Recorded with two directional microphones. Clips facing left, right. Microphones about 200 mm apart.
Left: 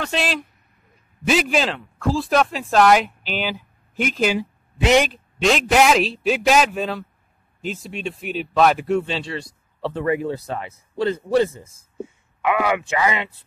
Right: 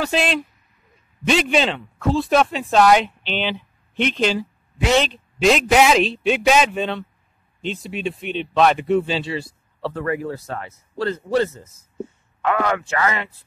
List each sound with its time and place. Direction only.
0.0 s speech: centre (ahead or behind); by 5.1 s 15° left (ahead or behind)
5.1 s speech: centre (ahead or behind)
9.8 s a man's voice: 20° left (ahead or behind)